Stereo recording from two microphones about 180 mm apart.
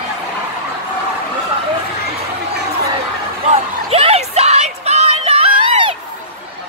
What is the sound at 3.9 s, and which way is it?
Music, 35° right (ahead or behind).